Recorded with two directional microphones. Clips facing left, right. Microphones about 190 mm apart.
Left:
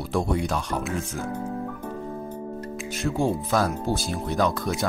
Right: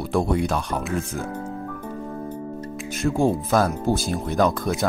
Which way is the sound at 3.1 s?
50° right (ahead or behind).